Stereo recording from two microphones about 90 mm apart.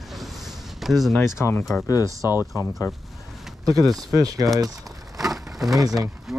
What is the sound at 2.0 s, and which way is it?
Speech, 35° right (ahead or behind).